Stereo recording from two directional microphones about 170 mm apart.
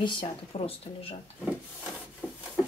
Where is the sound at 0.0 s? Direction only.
30° left (ahead or behind).